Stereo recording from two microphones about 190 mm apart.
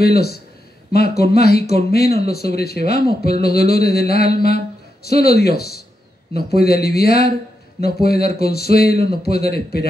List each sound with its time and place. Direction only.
0.0 s speech: 55° left (ahead or behind)